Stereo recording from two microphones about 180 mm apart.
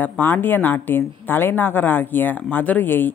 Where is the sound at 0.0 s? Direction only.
10° left (ahead or behind).